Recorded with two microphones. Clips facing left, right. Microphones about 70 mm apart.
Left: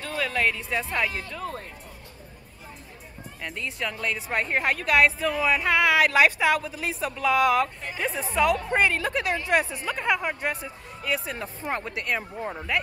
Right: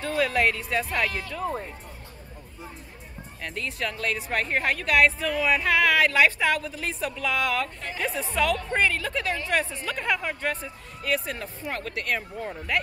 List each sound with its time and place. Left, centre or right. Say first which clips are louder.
0.0 s speech: right 3 dB; centre
1.4 s speech: right 7 dB; right
3.4 s a woman's voice: right 1 dB; centre
7.8 s speech: even; centre
8.5 s a woman's voice: left 2 dB; centre
11.6 s speech: left 3 dB; left
11.9 s a woman's voice: even; centre